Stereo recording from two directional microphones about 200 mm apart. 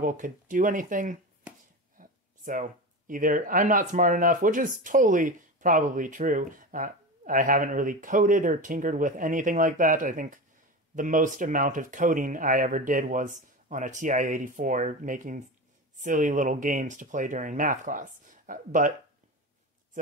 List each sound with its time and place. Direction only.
0.0 s speech: 40° right (ahead or behind)